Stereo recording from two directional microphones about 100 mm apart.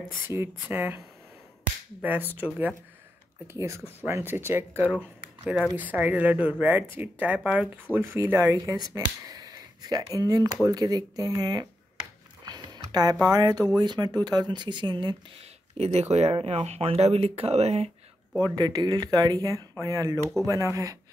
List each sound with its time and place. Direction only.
0.3 s speech: 25° right (ahead or behind)
3.5 s speech: 30° right (ahead or behind); by 7.8 s 15° right (ahead or behind)
7.9 s speech: 25° right (ahead or behind)
8.8 s speech: 40° right (ahead or behind)
12.4 s a sound: 45° right (ahead or behind)
13.7 s speech: 45° right (ahead or behind)
15.8 s speech: 90° right
18.4 s speech: 40° right (ahead or behind)